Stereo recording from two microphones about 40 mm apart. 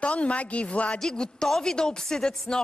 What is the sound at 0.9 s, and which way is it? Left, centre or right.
A woman's voice, centre.